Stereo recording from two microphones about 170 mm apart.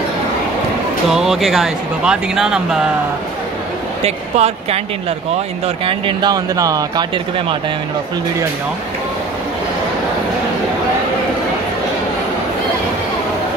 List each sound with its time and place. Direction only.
1.1 s speech: centre (ahead or behind)
4.0 s speech: 40° right (ahead or behind)
5.9 s speech: 25° right (ahead or behind)